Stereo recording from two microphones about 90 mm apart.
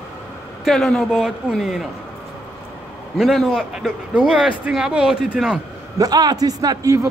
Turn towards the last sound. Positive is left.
turn(degrees=-40)  # may be behind; listen again after turning